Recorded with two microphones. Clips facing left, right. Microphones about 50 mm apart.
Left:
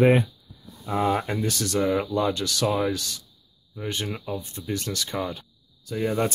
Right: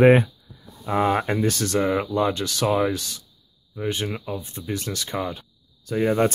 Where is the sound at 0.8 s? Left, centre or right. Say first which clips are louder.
Right 3 dB; right; by 5.5 s centre.